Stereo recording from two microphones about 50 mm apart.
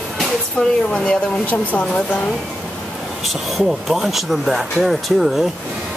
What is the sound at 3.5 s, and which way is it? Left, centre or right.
Speech, centre.